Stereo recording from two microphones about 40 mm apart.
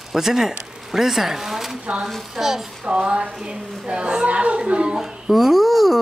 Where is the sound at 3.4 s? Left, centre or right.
Right.